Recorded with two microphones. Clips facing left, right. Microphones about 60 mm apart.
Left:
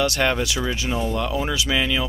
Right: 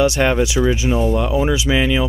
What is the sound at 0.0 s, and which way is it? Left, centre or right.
Speech, centre.